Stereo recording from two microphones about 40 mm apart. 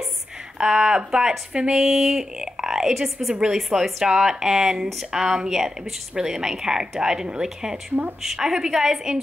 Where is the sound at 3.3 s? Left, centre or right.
Centre.